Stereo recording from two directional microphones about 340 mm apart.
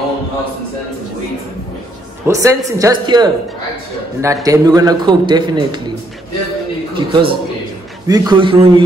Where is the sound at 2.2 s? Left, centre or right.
Centre.